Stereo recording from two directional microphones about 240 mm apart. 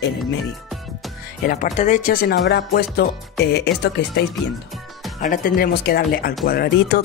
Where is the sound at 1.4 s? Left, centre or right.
Left.